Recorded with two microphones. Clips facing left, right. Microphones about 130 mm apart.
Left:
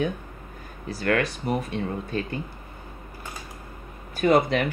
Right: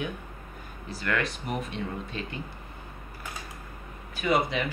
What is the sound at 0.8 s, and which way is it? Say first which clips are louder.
Speech: left 6 dB; 40° left (ahead or behind).